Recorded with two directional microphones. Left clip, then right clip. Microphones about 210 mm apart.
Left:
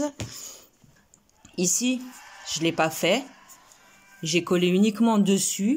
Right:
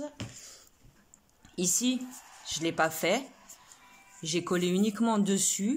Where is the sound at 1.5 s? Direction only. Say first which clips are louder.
Left 4 dB; 5° left (ahead or behind).